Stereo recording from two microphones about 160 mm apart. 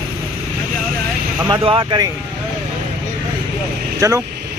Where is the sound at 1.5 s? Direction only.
35° right (ahead or behind).